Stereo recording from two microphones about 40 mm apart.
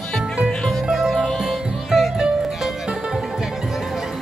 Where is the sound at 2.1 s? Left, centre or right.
Centre.